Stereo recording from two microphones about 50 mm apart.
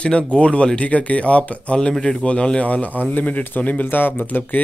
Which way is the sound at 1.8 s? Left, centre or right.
Centre.